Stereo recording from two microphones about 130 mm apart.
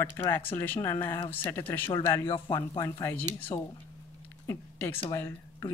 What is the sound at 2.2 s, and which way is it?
Speech, 40° left (ahead or behind).